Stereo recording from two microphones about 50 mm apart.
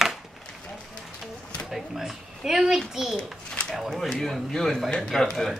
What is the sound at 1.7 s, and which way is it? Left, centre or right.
A child's voice, centre.